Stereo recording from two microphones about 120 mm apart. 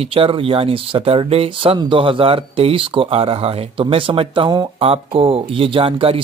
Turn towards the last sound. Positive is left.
turn(degrees=-50)  # may be behind; listen again after turning